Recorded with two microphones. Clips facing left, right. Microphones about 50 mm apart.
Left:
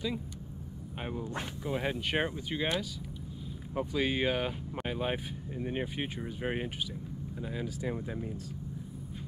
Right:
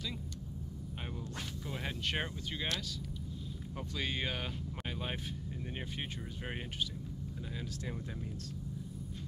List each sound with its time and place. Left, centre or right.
1.0 s speech: centre